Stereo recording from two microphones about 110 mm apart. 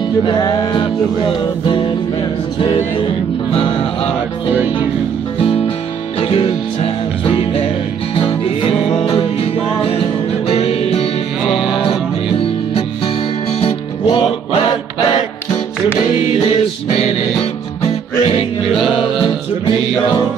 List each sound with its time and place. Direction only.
0.2 s music: 45° left (ahead or behind)
6.2 s music: 55° left (ahead or behind)
9.4 s music: 65° left (ahead or behind)
12.7 s music: 65° left (ahead or behind)